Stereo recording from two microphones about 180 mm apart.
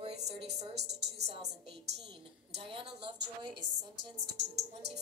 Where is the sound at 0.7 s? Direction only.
70° right (ahead or behind).